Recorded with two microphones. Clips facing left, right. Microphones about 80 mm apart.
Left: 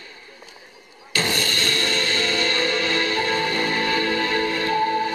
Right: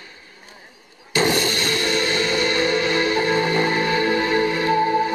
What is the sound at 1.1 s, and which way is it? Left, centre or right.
Music, right.